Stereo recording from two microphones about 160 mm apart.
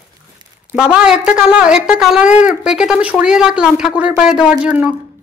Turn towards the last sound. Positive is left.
turn(degrees=-5)  # may be behind; listen again after turning